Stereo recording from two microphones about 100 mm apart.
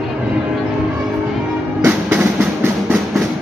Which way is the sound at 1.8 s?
20° right (ahead or behind).